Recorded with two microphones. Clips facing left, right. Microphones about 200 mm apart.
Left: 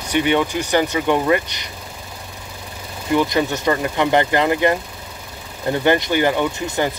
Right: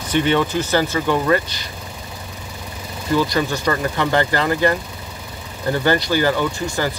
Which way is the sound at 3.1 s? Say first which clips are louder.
Left 1 dB; 20° left (ahead or behind).